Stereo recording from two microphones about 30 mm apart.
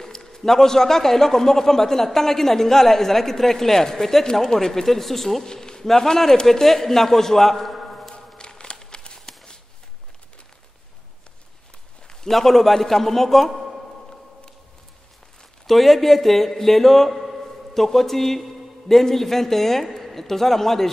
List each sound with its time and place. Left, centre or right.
0.0 s a man's voice: centre
5.5 s a man's voice: centre
8.4 s a sound: left
12.3 s speech: centre
15.6 s speech: centre
17.2 s a sound: centre
17.7 s a woman's voice: centre